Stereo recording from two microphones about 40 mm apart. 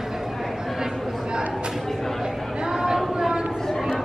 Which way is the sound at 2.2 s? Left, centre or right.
Centre.